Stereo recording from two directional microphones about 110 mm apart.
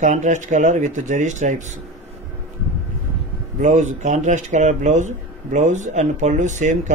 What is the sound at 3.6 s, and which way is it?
Speech, 90° right.